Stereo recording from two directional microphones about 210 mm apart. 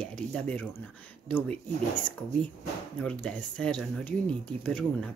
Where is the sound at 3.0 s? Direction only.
5° left (ahead or behind).